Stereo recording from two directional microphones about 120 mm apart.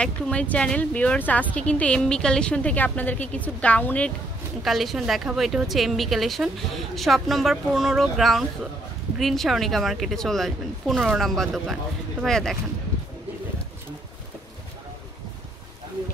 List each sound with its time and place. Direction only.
0.0 s speech: 10° left (ahead or behind)
4.6 s a woman's voice: centre (ahead or behind)